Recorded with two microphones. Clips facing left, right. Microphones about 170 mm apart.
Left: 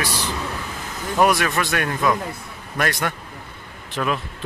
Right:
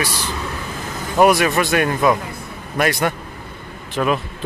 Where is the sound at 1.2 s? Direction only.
10° right (ahead or behind).